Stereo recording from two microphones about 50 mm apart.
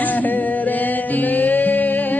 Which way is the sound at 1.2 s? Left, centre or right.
Left.